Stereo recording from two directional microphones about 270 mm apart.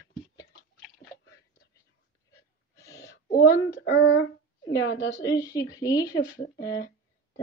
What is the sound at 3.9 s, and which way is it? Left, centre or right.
Speech, left.